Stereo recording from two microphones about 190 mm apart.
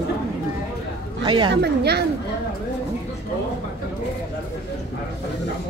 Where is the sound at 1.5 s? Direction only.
60° right (ahead or behind).